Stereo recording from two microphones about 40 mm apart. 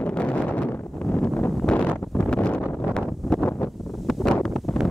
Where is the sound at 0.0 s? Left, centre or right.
Left; by 4.6 s centre.